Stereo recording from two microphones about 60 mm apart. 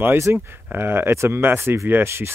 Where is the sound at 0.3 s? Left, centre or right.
Right.